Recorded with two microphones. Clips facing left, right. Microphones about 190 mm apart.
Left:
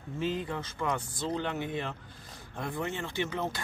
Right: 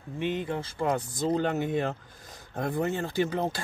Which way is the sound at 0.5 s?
30° right (ahead or behind).